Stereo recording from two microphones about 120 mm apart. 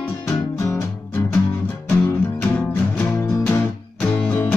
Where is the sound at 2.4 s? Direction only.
15° left (ahead or behind).